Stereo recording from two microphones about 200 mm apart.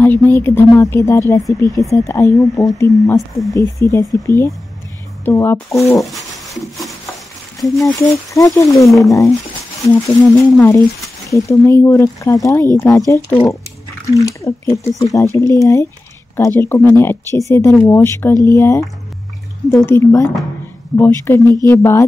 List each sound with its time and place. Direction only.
0.0 s a sound: 10° left (ahead or behind)
0.7 s speech: 15° left (ahead or behind)
3.2 s speech: centre (ahead or behind)
3.5 s speech: 15° left (ahead or behind)
5.9 s a sound: centre (ahead or behind)
7.8 s speech: 15° left (ahead or behind)
8.8 s speech: centre (ahead or behind)
9.9 s speech: 15° left (ahead or behind)
19.9 s speech: 15° left (ahead or behind)